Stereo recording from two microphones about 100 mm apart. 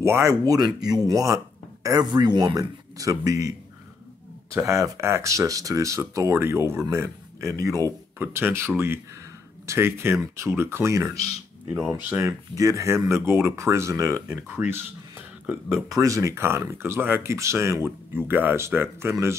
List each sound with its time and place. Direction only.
0.0 s speech: 30° right (ahead or behind)
4.6 s speech: 30° right (ahead or behind)
8.2 s speech: 25° right (ahead or behind)
14.5 s speech: 20° right (ahead or behind)
15.9 s speech: 35° right (ahead or behind)